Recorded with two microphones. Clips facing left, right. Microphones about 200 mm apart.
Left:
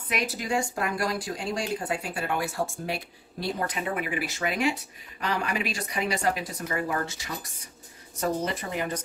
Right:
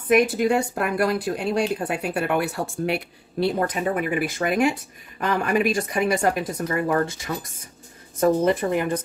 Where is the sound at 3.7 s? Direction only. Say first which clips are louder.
Right 6 dB; 45° right (ahead or behind).